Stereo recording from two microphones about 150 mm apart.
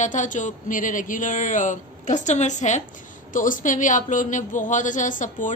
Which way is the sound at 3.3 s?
65° left (ahead or behind).